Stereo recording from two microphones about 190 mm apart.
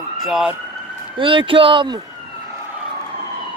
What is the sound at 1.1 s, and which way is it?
Speech, 25° right (ahead or behind).